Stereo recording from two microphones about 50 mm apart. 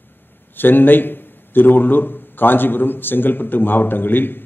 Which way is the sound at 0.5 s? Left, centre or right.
Left.